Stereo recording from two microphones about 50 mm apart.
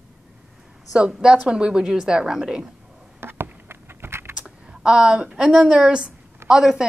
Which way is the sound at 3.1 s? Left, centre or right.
Right.